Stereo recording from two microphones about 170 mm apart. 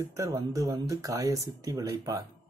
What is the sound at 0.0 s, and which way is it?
Speech, 20° right (ahead or behind).